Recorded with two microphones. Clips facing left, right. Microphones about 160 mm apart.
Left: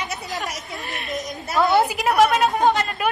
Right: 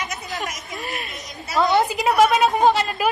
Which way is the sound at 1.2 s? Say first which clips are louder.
Even; centre (ahead or behind).